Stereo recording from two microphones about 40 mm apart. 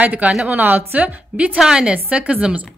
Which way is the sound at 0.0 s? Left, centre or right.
Right.